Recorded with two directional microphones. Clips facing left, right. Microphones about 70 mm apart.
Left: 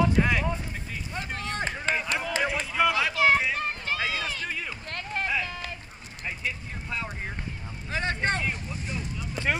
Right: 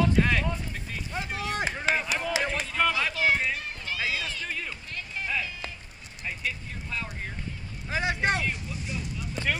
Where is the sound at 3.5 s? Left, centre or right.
Left.